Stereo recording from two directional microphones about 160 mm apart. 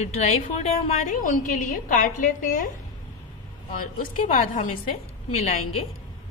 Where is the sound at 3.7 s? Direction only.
60° left (ahead or behind).